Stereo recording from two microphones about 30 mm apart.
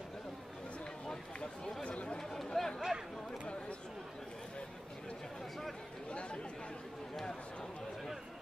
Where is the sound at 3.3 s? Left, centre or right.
Left.